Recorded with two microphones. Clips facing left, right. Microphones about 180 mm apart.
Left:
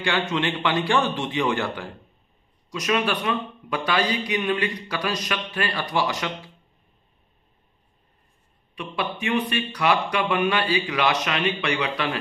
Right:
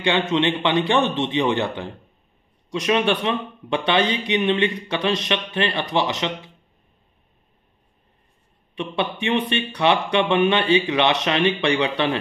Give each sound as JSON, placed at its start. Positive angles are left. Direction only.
{"t": 0.3, "sound": "speech", "side_deg": -20}
{"t": 8.7, "sound": "speech", "side_deg": -30}